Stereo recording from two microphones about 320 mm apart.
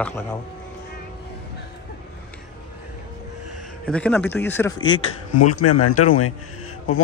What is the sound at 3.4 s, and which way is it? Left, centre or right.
Music, right.